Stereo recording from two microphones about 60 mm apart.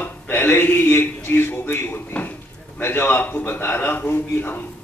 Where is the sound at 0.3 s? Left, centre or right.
Left.